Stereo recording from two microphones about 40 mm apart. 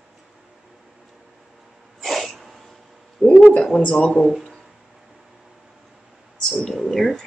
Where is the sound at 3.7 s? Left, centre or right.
Left.